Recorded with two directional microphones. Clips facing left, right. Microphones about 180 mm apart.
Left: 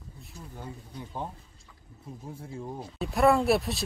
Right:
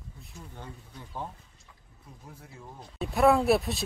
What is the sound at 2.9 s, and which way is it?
Speech, centre (ahead or behind).